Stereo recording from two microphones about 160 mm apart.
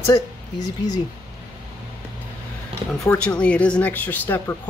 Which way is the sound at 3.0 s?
10° left (ahead or behind).